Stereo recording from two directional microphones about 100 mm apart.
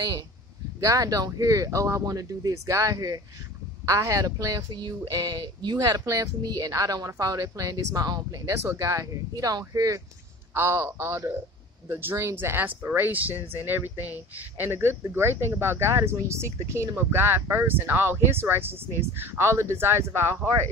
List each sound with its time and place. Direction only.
0.7 s a woman's voice: 35° right (ahead or behind)
5.9 s a woman's voice: 35° right (ahead or behind)
10.5 s speech: 25° right (ahead or behind)